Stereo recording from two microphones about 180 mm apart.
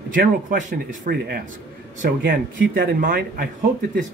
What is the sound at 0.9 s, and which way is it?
A man's voice, 65° right (ahead or behind).